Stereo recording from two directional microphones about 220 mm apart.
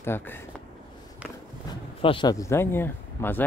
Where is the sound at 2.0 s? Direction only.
20° left (ahead or behind).